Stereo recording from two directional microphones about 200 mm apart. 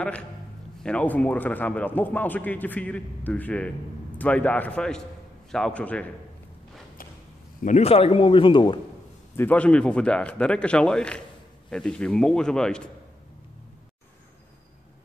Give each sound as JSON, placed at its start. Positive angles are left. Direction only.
{"t": 0.8, "sound": "speech", "side_deg": 5}
{"t": 7.6, "sound": "a man's voice", "side_deg": 30}
{"t": 9.4, "sound": "speech", "side_deg": 5}